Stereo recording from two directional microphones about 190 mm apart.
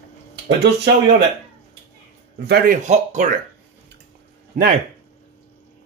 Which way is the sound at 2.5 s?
45° right (ahead or behind).